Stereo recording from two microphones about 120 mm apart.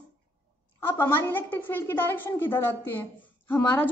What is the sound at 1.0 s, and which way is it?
A woman's voice, 15° left (ahead or behind).